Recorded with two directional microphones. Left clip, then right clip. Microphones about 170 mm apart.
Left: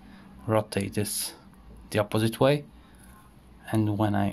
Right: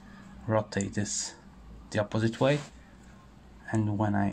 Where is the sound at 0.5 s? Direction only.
30° left (ahead or behind).